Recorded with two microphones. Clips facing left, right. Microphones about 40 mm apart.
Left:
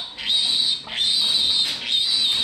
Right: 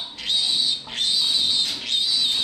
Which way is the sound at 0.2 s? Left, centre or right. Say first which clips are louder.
Left 1 dB; centre.